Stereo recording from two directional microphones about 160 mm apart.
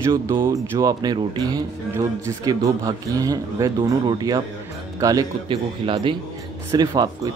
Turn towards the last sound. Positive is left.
turn(degrees=-25)  # may be behind; listen again after turning